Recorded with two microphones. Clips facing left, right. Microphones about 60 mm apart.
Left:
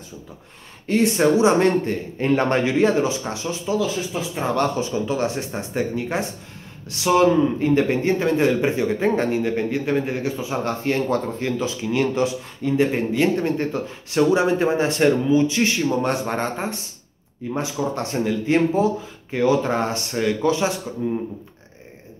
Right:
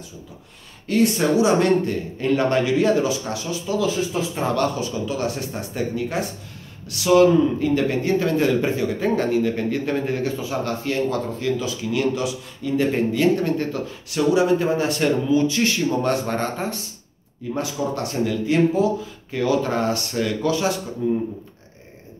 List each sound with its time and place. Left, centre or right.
0.8 s a man's voice: left
3.7 s speech: centre
4.6 s a man's voice: left
12.7 s a man's voice: centre